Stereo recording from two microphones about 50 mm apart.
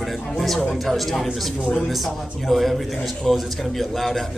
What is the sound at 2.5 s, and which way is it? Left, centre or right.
A man's voice, centre.